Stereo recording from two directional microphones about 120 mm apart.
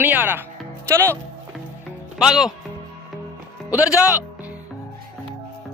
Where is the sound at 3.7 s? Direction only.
10° right (ahead or behind).